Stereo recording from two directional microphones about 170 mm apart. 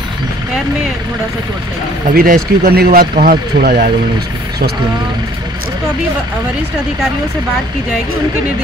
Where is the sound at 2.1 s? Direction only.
60° right (ahead or behind).